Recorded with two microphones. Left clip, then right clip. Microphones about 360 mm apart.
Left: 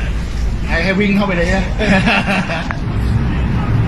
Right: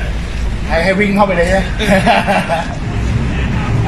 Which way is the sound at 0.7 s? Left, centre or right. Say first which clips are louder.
Right 4 dB; centre.